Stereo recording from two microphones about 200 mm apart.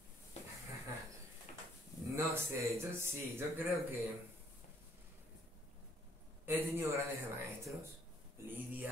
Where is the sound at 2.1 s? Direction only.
15° right (ahead or behind).